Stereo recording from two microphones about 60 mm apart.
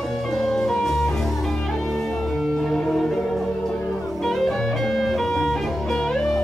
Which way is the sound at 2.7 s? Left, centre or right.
Centre.